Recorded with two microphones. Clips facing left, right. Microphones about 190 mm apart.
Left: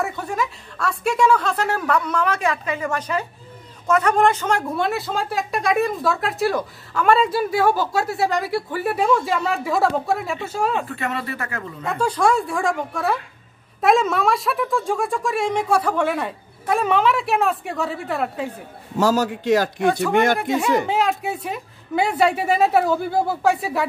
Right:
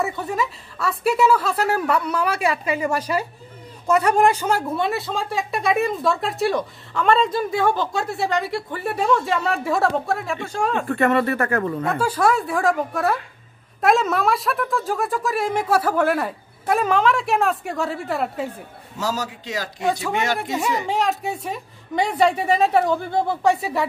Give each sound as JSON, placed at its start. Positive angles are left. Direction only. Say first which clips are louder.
{"t": 0.0, "sound": "a woman's voice", "louder": "right 1 dB", "side_deg": 0}
{"t": 10.9, "sound": "speech", "louder": "right 8 dB", "side_deg": -55}
{"t": 11.8, "sound": "speech", "louder": "left 4 dB", "side_deg": -5}
{"t": 18.9, "sound": "a man's voice", "louder": "left 7 dB", "side_deg": 55}
{"t": 19.9, "sound": "speech", "louder": "left 3 dB", "side_deg": 0}